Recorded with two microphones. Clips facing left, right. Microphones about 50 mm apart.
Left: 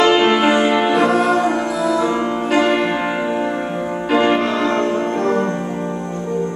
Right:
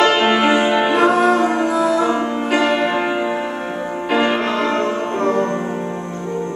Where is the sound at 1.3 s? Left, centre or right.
Centre.